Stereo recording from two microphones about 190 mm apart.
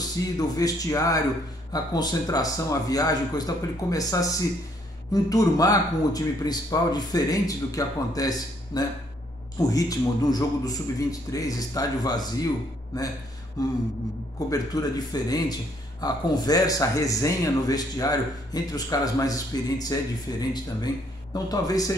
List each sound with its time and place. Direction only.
0.4 s speech: 20° left (ahead or behind)
13.6 s speech: 20° left (ahead or behind)